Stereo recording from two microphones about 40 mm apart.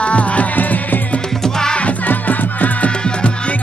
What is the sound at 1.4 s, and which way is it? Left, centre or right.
Music, centre.